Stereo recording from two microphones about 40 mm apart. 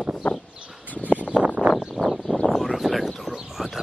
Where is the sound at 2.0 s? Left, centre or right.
Right.